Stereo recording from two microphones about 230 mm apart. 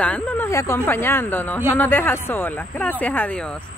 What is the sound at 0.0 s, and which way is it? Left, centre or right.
Speech, centre.